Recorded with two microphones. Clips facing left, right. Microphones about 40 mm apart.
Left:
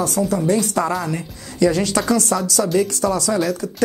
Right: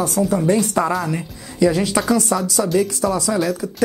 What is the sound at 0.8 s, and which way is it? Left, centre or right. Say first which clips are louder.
A woman's voice: right 1 dB; centre.